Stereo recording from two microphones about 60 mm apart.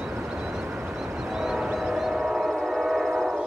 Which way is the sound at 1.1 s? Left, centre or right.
Centre.